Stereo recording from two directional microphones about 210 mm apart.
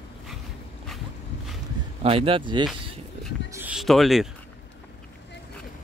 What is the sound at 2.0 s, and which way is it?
Speech, 25° right (ahead or behind).